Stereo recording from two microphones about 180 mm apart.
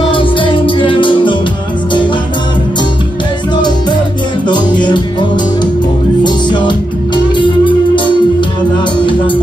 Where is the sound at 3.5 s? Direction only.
25° left (ahead or behind).